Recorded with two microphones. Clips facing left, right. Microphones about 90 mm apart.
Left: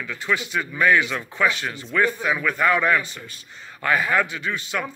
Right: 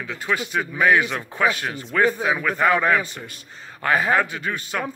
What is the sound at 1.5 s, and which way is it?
A man's voice, 45° right (ahead or behind).